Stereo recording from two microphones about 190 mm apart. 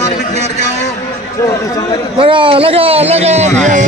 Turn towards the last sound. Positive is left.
turn(degrees=-35)  # may be behind; listen again after turning